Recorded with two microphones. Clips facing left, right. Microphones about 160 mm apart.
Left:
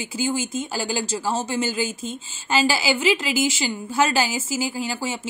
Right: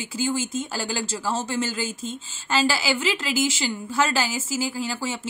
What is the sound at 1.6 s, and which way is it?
A woman's voice, 5° left (ahead or behind).